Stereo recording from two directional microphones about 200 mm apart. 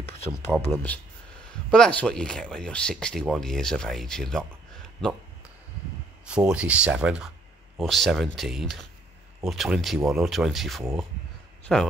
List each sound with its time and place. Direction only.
0.7 s speech: 5° left (ahead or behind)
6.2 s speech: 5° right (ahead or behind)